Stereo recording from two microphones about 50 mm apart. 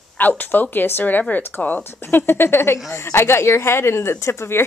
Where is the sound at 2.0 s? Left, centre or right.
Left.